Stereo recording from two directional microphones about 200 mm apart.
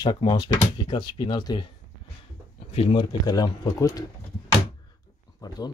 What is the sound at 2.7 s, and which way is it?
Speech, 25° left (ahead or behind).